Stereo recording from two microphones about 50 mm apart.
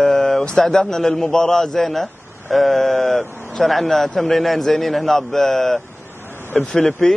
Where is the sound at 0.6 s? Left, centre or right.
Centre.